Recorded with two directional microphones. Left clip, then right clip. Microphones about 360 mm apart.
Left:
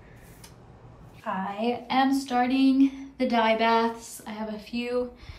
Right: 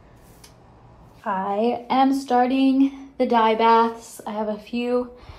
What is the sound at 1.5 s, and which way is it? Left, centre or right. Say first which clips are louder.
A woman's voice: right 5 dB; centre.